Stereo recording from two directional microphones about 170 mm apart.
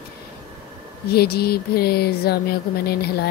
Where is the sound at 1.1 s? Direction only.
70° left (ahead or behind).